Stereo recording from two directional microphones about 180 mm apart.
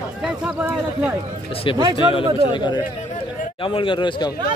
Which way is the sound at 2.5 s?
25° left (ahead or behind).